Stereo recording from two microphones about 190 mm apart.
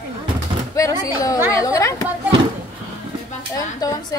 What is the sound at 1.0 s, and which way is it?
Speech, 20° left (ahead or behind).